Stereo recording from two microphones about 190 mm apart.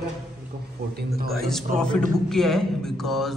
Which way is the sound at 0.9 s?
55° right (ahead or behind).